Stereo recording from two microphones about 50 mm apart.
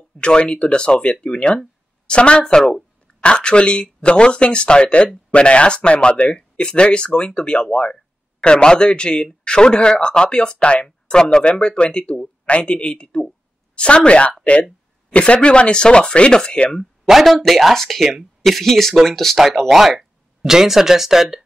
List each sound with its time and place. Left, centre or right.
0.2 s a woman's voice: centre
17.1 s speech: centre